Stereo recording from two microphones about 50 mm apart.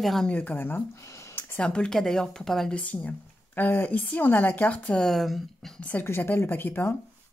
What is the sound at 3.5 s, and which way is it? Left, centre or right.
Speech, left.